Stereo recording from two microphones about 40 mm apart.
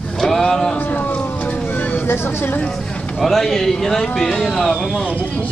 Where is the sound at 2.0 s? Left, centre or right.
Left.